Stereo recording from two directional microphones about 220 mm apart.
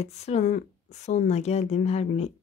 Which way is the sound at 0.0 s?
30° left (ahead or behind).